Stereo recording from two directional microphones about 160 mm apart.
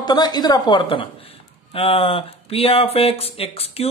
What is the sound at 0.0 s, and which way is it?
Speech, 25° left (ahead or behind).